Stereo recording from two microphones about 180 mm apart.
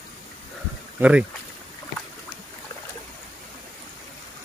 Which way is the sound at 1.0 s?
5° right (ahead or behind).